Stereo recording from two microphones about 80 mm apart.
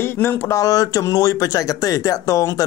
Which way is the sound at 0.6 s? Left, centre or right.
Left.